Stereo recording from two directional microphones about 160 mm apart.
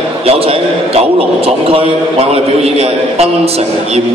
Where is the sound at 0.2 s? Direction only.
40° right (ahead or behind).